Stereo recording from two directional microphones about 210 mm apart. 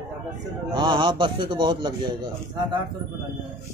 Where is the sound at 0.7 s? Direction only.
25° right (ahead or behind).